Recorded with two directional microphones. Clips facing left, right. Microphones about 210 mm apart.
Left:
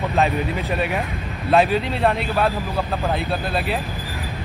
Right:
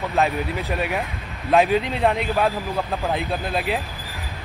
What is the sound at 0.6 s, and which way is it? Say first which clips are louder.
Speech: left 2 dB; 15° right (ahead or behind).